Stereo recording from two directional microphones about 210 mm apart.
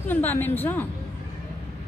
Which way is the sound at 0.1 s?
10° left (ahead or behind).